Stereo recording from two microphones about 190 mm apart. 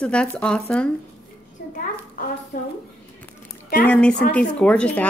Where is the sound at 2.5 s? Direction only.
45° left (ahead or behind).